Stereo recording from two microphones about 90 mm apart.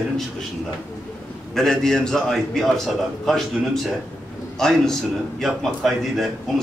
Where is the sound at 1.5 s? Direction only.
5° left (ahead or behind).